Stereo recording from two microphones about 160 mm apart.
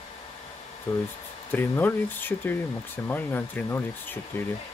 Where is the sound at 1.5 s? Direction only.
10° left (ahead or behind).